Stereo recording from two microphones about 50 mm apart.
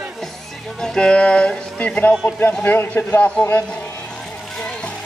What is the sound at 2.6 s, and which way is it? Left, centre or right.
Speech, left.